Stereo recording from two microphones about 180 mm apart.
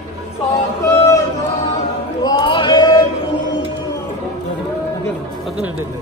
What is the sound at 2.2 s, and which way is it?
Male singing, 25° left (ahead or behind).